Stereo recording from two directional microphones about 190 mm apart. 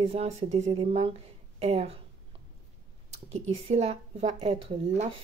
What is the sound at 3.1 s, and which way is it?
Speech, 35° right (ahead or behind).